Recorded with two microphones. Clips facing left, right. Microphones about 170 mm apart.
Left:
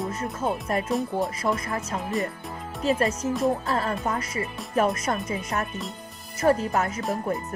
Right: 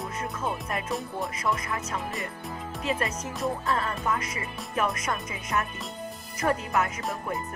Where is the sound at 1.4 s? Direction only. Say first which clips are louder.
Left 3 dB; 35° left (ahead or behind).